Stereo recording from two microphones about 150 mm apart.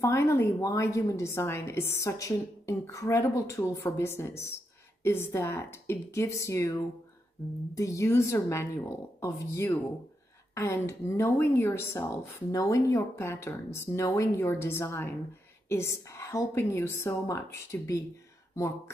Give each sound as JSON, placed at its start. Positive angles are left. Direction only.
{"t": 0.0, "sound": "a woman's voice", "side_deg": 15}